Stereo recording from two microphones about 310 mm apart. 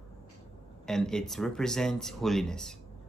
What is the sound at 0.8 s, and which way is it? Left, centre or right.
Speech, centre.